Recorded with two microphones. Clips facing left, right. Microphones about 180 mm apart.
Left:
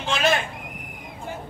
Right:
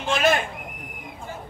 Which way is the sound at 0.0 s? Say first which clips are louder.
Right 2 dB; 50° right (ahead or behind).